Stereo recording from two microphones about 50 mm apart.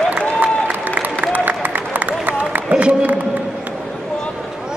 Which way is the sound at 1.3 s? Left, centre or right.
Right.